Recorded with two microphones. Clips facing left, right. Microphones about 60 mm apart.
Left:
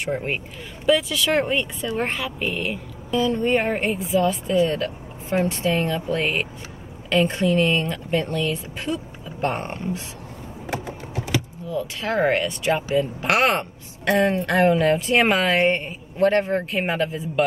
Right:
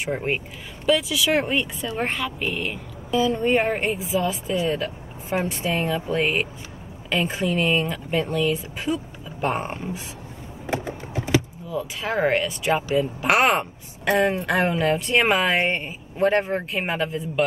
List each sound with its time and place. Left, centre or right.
0.0 s speech: centre
10.7 s a sound: right
11.7 s speech: centre